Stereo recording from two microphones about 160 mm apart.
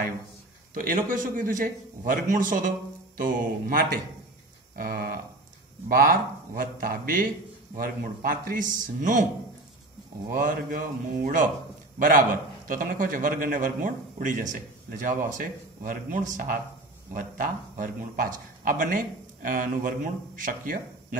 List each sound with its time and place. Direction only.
0.7 s a man's voice: 60° right (ahead or behind)
10.3 s a man's voice: 60° right (ahead or behind)
12.0 s a man's voice: 55° right (ahead or behind)